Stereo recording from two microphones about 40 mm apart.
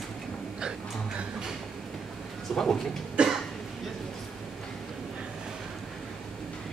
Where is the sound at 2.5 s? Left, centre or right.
Centre.